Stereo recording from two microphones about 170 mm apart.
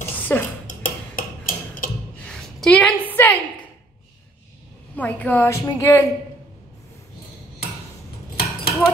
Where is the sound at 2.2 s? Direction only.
5° left (ahead or behind).